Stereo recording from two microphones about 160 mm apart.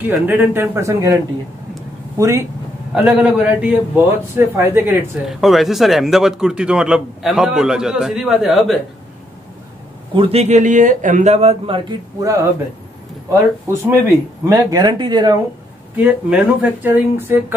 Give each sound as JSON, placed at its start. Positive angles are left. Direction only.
{"t": 0.0, "sound": "a man's voice", "side_deg": -10}
{"t": 2.9, "sound": "a man's voice", "side_deg": -5}
{"t": 5.2, "sound": "a man's voice", "side_deg": 0}
{"t": 10.1, "sound": "speech", "side_deg": -35}
{"t": 12.2, "sound": "speech", "side_deg": -20}
{"t": 13.8, "sound": "speech", "side_deg": -15}
{"t": 16.0, "sound": "a man's voice", "side_deg": -10}